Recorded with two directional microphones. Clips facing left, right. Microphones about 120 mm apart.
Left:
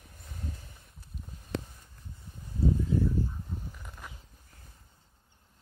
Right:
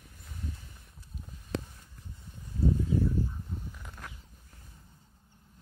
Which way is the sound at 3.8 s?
Centre (ahead or behind).